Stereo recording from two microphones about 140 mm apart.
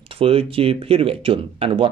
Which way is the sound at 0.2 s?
45° right (ahead or behind).